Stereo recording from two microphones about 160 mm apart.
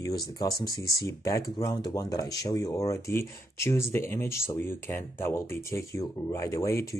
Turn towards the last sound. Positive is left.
turn(degrees=20)  # may be behind; listen again after turning